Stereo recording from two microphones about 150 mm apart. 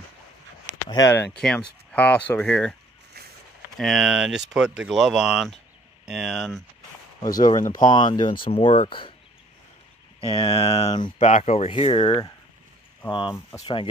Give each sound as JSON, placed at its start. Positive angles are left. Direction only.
{"t": 0.8, "sound": "speech", "side_deg": 25}
{"t": 1.3, "sound": "speech", "side_deg": 5}
{"t": 3.7, "sound": "speech", "side_deg": 0}
{"t": 7.2, "sound": "speech", "side_deg": 30}
{"t": 10.3, "sound": "speech", "side_deg": 35}
{"t": 11.1, "sound": "speech", "side_deg": 50}